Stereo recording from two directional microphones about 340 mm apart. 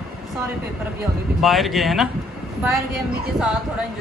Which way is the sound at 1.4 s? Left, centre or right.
Centre.